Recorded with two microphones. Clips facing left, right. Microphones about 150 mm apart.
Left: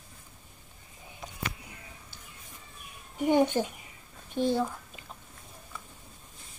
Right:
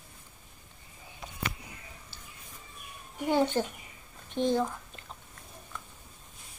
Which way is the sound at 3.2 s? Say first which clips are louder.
Left 2 dB; 15° left (ahead or behind).